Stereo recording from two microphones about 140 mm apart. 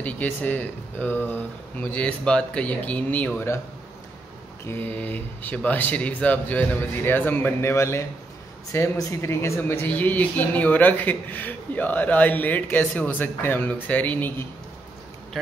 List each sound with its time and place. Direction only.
0.0 s speech: 10° left (ahead or behind)
4.6 s speech: 15° left (ahead or behind)